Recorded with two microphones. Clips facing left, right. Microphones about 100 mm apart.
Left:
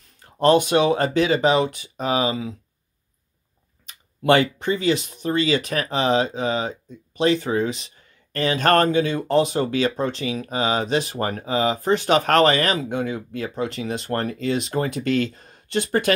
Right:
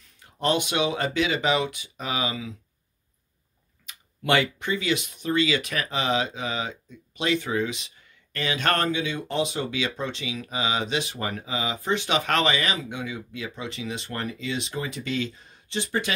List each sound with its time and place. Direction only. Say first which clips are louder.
0.2 s speech: left 8 dB; 40° left (ahead or behind)
3.8 s speech: left 9 dB; 35° left (ahead or behind); by 16.1 s 55° left (ahead or behind)